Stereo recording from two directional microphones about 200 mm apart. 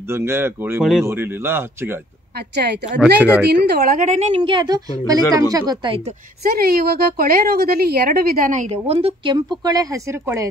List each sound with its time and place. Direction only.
0.1 s speech: 10° right (ahead or behind)
2.5 s a woman's voice: 55° right (ahead or behind)
3.0 s speech: 5° right (ahead or behind)
3.6 s a woman's voice: 50° right (ahead or behind)
4.4 s speech: 25° right (ahead or behind)
6.4 s a woman's voice: 50° right (ahead or behind); by 9.4 s 25° right (ahead or behind)
9.7 s speech: 15° right (ahead or behind)